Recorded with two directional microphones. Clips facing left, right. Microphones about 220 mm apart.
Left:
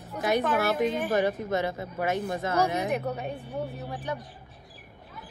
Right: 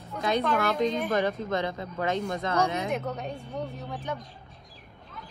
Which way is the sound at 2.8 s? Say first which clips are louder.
Left 2 dB; 15° left (ahead or behind).